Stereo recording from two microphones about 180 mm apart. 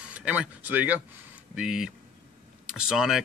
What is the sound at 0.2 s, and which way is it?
Speech, 5° right (ahead or behind).